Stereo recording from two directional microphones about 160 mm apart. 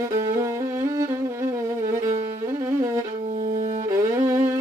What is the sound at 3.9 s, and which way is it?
Music, 20° right (ahead or behind).